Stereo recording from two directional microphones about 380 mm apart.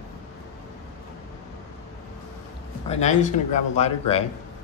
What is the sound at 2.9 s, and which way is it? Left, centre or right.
Speech, centre.